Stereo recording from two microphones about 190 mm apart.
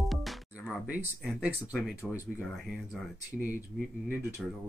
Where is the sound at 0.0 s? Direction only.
Centre (ahead or behind).